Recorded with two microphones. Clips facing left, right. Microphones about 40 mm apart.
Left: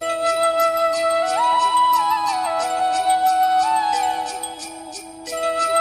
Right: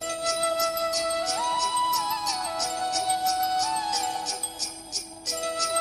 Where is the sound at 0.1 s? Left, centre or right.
Left.